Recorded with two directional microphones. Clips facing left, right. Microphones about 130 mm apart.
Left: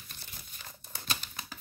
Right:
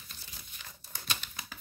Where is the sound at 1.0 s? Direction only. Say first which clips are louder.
Left 1 dB; 40° left (ahead or behind).